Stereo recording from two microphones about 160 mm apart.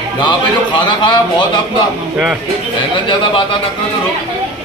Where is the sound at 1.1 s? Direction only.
30° left (ahead or behind).